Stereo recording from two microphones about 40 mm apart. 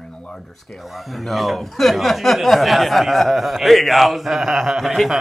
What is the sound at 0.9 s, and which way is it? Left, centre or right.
Speech, centre.